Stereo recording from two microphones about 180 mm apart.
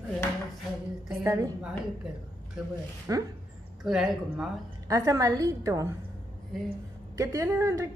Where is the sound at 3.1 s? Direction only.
20° right (ahead or behind).